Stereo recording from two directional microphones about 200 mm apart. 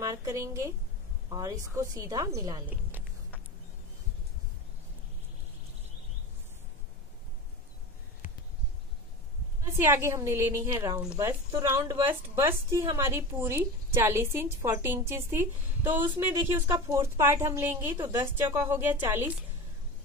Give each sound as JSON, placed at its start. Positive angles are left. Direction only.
{"t": 0.0, "sound": "a woman's voice", "side_deg": -15}
{"t": 9.8, "sound": "a woman's voice", "side_deg": -10}